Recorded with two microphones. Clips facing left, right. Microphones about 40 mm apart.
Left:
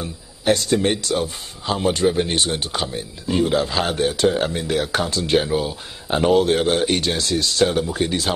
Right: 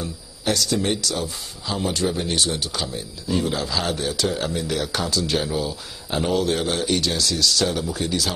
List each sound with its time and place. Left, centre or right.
0.0 s speech: left